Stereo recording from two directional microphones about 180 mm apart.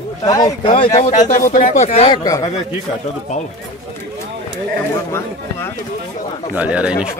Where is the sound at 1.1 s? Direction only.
45° left (ahead or behind).